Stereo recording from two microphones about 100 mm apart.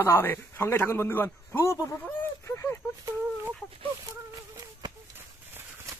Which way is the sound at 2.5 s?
30° left (ahead or behind).